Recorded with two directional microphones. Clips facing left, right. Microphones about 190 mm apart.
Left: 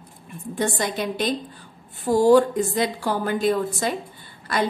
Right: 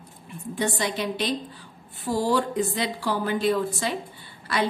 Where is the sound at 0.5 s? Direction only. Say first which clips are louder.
Left 2 dB; 45° left (ahead or behind).